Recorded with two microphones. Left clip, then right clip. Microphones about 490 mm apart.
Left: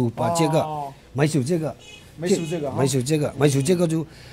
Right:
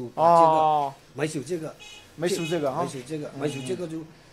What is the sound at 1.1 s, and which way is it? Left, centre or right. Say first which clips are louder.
Speech: left 6 dB; left.